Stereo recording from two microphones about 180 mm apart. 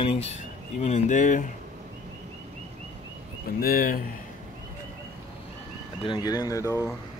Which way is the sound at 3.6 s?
55° left (ahead or behind).